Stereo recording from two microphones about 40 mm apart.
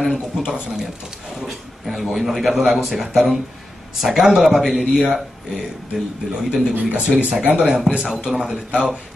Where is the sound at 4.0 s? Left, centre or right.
Centre.